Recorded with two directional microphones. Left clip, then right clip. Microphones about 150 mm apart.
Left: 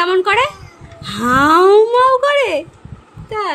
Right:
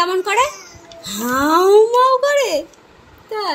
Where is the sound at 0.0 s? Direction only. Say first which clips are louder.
Left 3 dB; 5° left (ahead or behind).